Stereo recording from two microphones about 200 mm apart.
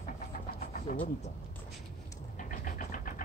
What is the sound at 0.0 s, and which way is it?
Vehicle, 45° left (ahead or behind).